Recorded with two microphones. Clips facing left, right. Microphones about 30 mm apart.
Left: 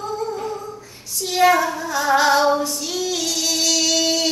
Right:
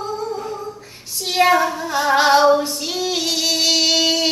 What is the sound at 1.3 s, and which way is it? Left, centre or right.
Child singing, right.